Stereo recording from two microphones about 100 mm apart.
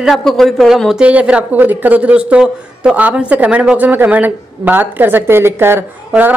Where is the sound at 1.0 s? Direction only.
15° right (ahead or behind).